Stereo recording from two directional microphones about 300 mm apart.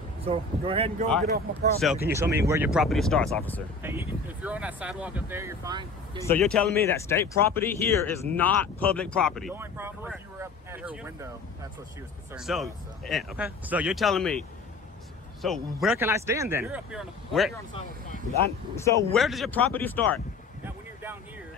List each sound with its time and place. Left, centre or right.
0.2 s speech: centre
1.3 s speech: right
1.8 s speech: centre
3.8 s speech: centre
6.1 s speech: centre
12.4 s speech: centre
15.4 s speech: centre
18.8 s speech: centre
20.6 s boat: centre